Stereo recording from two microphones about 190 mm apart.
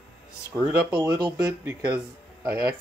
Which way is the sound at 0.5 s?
5° right (ahead or behind).